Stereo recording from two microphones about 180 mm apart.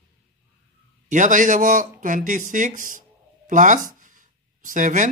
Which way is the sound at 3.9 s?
45° right (ahead or behind).